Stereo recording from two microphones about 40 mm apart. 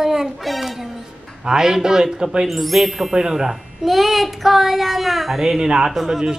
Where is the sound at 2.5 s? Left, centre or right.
Centre.